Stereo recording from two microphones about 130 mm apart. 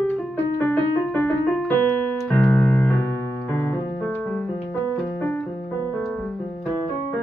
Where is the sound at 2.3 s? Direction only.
15° left (ahead or behind).